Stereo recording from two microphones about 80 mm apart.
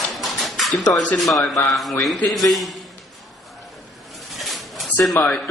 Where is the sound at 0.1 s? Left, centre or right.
Centre.